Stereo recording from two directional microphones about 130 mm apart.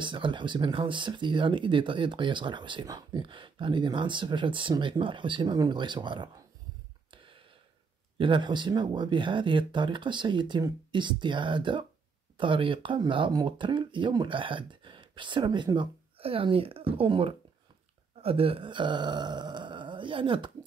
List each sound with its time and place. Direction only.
0.0 s speech: 40° right (ahead or behind)
7.1 s a sound: 40° right (ahead or behind)
8.2 s speech: 40° right (ahead or behind)